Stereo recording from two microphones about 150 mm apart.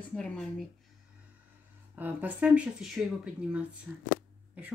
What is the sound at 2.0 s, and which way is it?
Speech, 10° right (ahead or behind).